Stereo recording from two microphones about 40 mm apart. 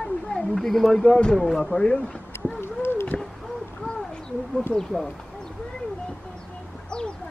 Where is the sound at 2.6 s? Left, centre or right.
Left.